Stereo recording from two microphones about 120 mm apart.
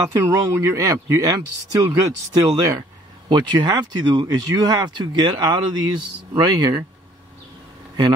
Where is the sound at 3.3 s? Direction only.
40° right (ahead or behind).